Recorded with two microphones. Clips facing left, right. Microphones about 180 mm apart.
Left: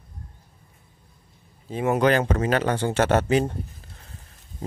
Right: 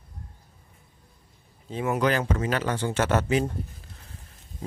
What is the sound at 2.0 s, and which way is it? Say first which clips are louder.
Speech: left 4 dB; 65° left (ahead or behind).